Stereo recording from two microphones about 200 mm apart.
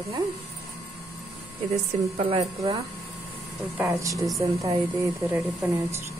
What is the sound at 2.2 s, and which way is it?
Speech, 30° right (ahead or behind).